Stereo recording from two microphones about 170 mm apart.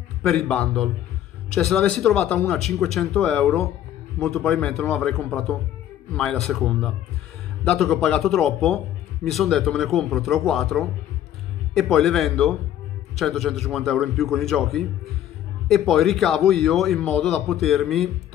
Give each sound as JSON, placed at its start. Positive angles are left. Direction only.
{"t": 0.3, "sound": "speech", "side_deg": 5}